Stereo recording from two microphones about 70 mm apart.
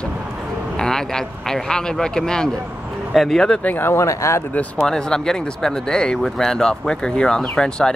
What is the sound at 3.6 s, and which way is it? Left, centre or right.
Speech, left.